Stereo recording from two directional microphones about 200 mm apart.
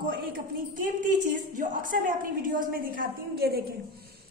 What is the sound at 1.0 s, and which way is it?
A woman's voice, 40° right (ahead or behind).